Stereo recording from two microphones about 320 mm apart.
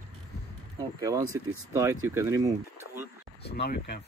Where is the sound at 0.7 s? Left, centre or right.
Centre.